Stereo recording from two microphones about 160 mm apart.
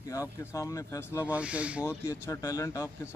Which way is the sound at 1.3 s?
10° right (ahead or behind).